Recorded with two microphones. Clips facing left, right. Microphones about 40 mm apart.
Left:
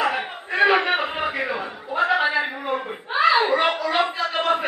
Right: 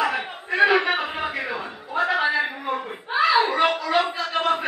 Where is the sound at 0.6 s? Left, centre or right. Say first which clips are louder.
Even; left.